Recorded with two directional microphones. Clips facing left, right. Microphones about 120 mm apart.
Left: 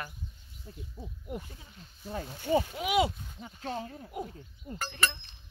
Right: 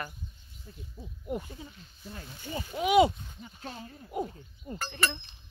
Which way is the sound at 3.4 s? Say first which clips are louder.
Left 6 dB; 90° left.